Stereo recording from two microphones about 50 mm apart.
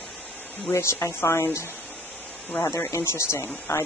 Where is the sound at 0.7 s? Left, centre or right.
Left.